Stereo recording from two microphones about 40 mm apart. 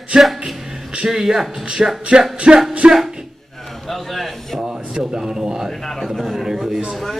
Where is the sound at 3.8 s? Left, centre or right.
Centre.